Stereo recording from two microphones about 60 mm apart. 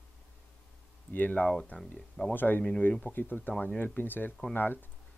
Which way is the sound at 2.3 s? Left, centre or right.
Left.